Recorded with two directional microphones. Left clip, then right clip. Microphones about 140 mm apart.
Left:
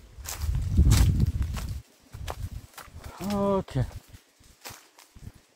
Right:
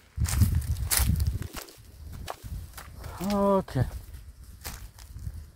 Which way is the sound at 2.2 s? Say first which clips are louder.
Even; 90° right.